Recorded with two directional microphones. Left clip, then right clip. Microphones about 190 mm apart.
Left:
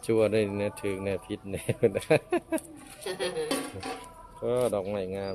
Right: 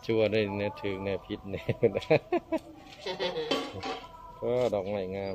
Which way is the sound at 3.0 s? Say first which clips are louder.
Even; 75° left (ahead or behind).